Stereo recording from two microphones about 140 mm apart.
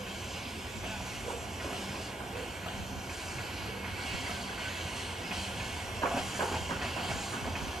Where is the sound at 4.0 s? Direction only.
Centre (ahead or behind).